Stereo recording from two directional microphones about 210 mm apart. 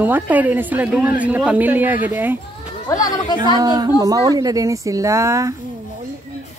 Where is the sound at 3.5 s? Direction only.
20° right (ahead or behind).